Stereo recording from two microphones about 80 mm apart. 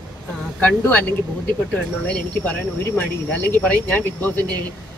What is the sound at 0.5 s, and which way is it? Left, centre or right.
Speech, centre.